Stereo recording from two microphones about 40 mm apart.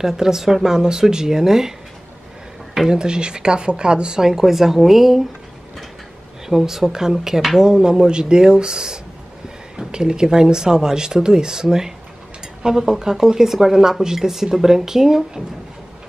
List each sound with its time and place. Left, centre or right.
0.0 s a woman's voice: centre
2.7 s speech: centre
4.2 s a woman's voice: centre
6.5 s a woman's voice: centre